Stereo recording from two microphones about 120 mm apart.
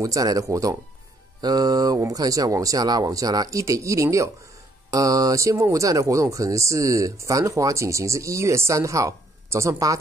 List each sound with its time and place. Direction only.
0.0 s speech: 30° right (ahead or behind)